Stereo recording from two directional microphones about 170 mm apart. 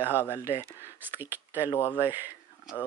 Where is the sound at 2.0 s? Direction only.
10° right (ahead or behind).